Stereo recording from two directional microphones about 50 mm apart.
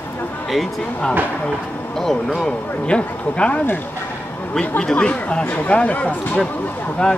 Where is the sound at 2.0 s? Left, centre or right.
Centre.